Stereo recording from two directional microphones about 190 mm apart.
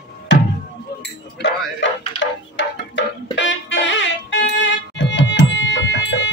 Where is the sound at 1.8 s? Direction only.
70° left (ahead or behind).